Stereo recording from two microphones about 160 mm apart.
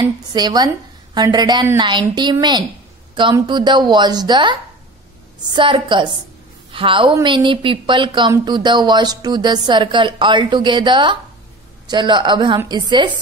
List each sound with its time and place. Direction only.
0.0 s a woman's voice: 25° right (ahead or behind)